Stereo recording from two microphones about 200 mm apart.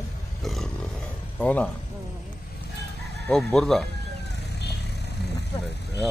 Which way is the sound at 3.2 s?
Centre (ahead or behind).